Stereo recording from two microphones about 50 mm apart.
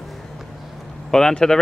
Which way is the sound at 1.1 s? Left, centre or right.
Centre.